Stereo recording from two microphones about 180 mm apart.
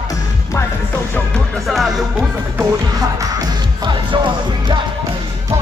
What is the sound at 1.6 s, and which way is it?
Music, centre (ahead or behind).